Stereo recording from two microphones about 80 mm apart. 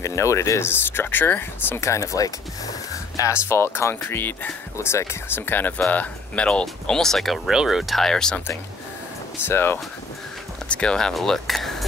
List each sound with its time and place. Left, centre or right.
0.0 s speech: left
3.2 s speech: left
4.7 s speech: left; by 8.4 s centre
9.5 s speech: left
10.7 s speech: centre